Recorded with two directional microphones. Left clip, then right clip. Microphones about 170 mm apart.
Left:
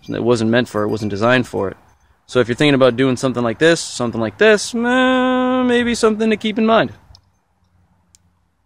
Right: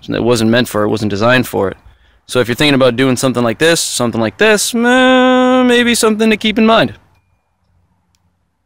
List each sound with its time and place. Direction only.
0.0 s speech: 20° right (ahead or behind)